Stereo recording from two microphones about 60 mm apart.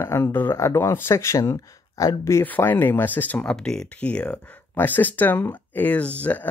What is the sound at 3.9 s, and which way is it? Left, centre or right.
Speech, centre.